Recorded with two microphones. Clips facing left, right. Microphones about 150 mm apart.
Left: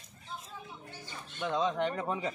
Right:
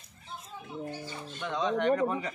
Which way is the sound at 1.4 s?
20° left (ahead or behind).